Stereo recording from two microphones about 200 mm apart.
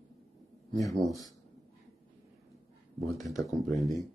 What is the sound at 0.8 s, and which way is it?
Speech, centre (ahead or behind).